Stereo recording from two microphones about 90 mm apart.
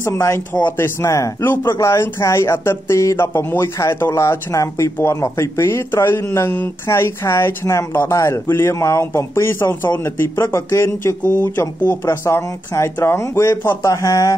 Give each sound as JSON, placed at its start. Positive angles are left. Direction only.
{"t": 0.0, "sound": "speech", "side_deg": 30}